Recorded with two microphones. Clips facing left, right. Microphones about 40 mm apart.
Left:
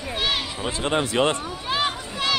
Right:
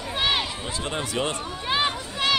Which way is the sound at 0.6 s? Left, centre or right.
Left.